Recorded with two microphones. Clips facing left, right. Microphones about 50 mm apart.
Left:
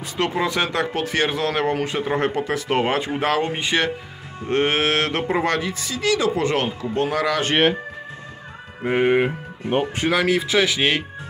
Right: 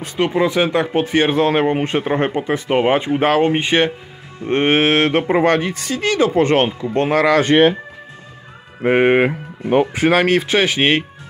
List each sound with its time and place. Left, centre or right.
0.2 s speech: centre
3.2 s speech: right
8.8 s speech: right
10.6 s speech: right